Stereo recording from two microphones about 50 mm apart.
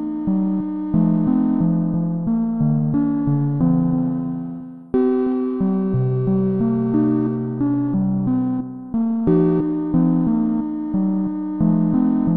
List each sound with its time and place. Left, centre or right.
0.9 s music: left
2.3 s music: left
2.9 s music: left
4.9 s music: centre; by 8.5 s left
9.2 s music: centre
9.9 s music: left
11.6 s music: left